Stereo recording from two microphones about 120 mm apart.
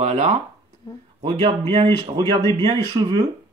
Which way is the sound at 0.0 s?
60° right (ahead or behind).